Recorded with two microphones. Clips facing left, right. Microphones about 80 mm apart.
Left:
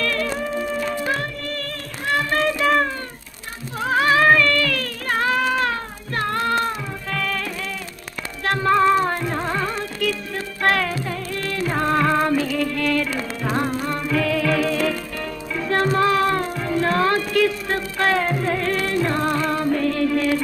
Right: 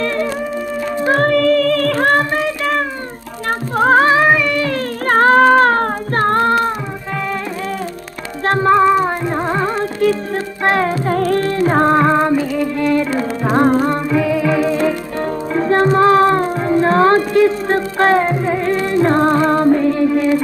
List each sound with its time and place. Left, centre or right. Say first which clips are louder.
0.0 s music: right 5 dB; right
1.3 s music: right 17 dB; right
2.3 s music: right 1 dB; centre
3.7 s music: right 10 dB; right
4.0 s music: right 5 dB; right
4.3 s a sound: right 2 dB; centre
5.0 s child singing: right 11 dB; right
8.5 s music: right 5 dB; right
11.1 s music: right 14 dB; right
11.4 s music: right 9 dB; right
13.7 s music: right 11 dB; right
14.0 s music: right 5 dB; centre
19.8 s mantra: right 6 dB; right